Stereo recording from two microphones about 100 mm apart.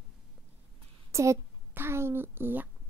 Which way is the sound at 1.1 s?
30° right (ahead or behind).